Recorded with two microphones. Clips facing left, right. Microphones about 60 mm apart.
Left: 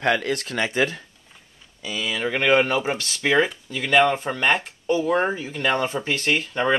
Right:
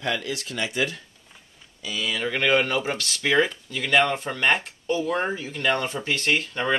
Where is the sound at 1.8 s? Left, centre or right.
Centre.